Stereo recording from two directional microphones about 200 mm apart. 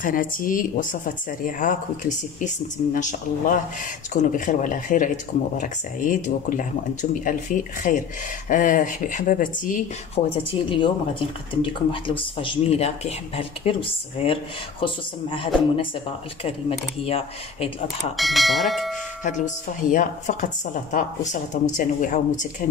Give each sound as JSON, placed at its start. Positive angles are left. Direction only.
{"t": 0.0, "sound": "speech", "side_deg": 45}
{"t": 10.1, "sound": "speech", "side_deg": 25}
{"t": 17.0, "sound": "speech", "side_deg": 30}
{"t": 18.1, "sound": "speech", "side_deg": 0}
{"t": 19.2, "sound": "speech", "side_deg": 40}